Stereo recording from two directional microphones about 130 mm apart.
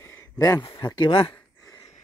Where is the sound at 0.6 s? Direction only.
40° left (ahead or behind).